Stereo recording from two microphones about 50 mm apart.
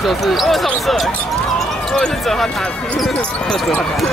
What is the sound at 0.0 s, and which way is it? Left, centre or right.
Speech, centre.